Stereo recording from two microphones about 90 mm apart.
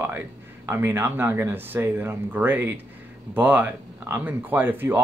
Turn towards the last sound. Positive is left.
turn(degrees=-25)  # may be behind; listen again after turning